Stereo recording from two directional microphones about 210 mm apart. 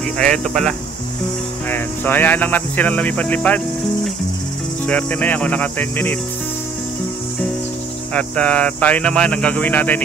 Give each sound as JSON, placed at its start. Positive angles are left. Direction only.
{"t": 0.2, "sound": "speech", "side_deg": 5}
{"t": 8.1, "sound": "speech", "side_deg": 5}